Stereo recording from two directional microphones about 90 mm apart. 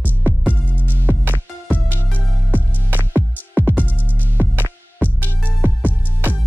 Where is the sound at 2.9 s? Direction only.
20° right (ahead or behind).